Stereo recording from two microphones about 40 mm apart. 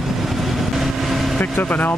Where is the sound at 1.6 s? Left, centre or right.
Left.